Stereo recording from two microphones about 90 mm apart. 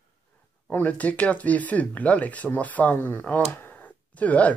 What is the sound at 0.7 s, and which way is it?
Speech, 20° left (ahead or behind).